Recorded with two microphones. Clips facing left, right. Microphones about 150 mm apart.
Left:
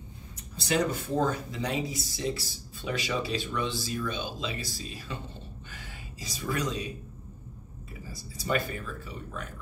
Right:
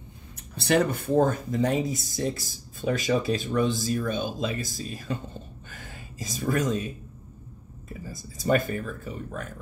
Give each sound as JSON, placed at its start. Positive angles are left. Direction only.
{"t": 0.6, "sound": "speech", "side_deg": -60}
{"t": 8.1, "sound": "speech", "side_deg": -45}